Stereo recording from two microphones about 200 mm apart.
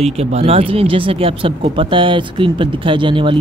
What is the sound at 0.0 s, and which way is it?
Speech, 30° right (ahead or behind).